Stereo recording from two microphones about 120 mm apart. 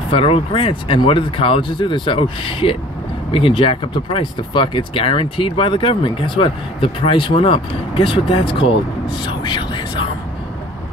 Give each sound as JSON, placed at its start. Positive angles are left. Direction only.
{"t": 0.1, "sound": "speech", "side_deg": 50}